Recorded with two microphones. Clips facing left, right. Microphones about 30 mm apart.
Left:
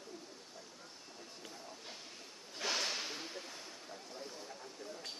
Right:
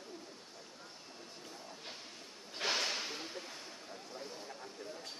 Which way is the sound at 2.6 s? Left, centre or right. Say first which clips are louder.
Right 2 dB; right.